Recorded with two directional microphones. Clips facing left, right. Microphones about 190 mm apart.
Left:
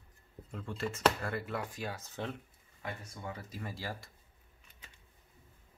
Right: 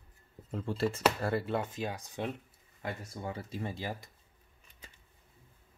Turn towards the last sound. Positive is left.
turn(degrees=-20)  # may be behind; listen again after turning